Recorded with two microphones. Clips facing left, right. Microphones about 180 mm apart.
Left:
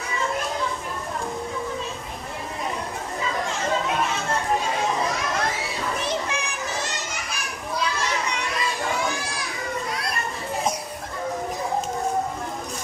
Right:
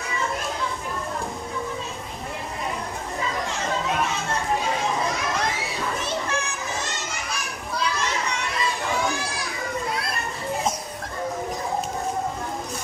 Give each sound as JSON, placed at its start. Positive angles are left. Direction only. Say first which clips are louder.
{"t": 6.0, "sound": "children playing", "louder": "even", "side_deg": 15}